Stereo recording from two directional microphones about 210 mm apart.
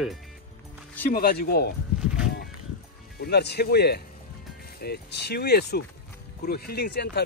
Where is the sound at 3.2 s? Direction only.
50° left (ahead or behind).